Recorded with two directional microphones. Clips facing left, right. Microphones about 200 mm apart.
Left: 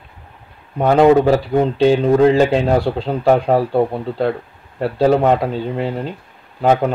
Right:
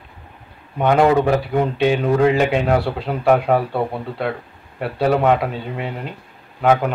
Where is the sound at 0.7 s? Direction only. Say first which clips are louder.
Left 4 dB; 30° left (ahead or behind).